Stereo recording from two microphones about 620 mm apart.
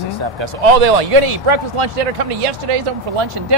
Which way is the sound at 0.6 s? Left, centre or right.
Right.